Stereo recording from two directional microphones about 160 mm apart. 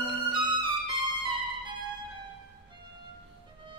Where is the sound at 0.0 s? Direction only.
30° right (ahead or behind).